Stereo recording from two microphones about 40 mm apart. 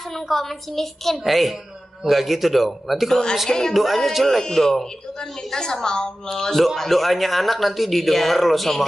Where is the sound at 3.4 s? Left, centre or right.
Centre.